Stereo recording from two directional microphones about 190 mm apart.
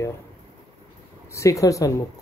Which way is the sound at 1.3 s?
15° left (ahead or behind).